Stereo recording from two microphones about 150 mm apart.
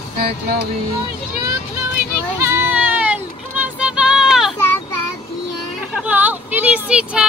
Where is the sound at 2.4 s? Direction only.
15° right (ahead or behind).